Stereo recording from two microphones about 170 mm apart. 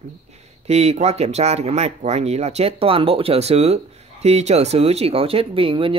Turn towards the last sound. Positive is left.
turn(degrees=-30)  # may be behind; listen again after turning